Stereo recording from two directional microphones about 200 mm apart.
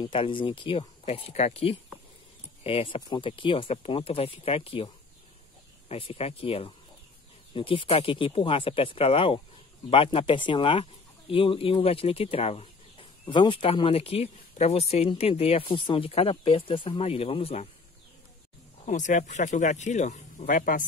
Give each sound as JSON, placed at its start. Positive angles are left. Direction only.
{"t": 0.0, "sound": "speech", "side_deg": 25}
{"t": 18.9, "sound": "speech", "side_deg": 35}